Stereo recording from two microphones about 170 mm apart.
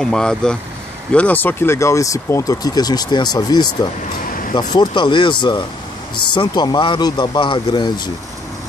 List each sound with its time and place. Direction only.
0.0 s speech: 5° left (ahead or behind); by 8.1 s 25° left (ahead or behind)